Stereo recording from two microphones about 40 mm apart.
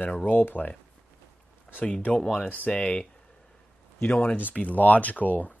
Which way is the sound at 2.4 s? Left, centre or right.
Left.